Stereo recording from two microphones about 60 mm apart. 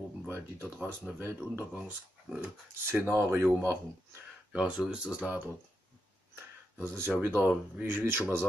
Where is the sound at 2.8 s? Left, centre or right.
Right.